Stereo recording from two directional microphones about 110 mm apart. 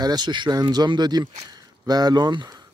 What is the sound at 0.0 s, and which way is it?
Speech, 40° right (ahead or behind).